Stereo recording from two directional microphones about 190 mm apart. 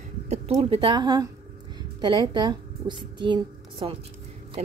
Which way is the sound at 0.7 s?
25° right (ahead or behind).